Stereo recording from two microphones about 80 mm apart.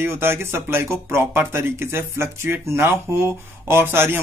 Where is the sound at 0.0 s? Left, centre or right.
Right.